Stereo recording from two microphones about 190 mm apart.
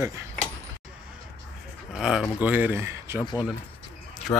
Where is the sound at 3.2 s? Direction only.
20° left (ahead or behind).